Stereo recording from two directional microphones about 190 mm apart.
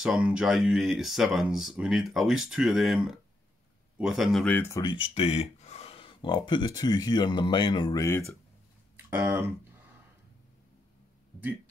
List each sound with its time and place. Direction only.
0.0 s speech: 5° right (ahead or behind); by 4.9 s 15° left (ahead or behind)
4.9 s speech: 30° left (ahead or behind)
8.9 s speech: 10° right (ahead or behind)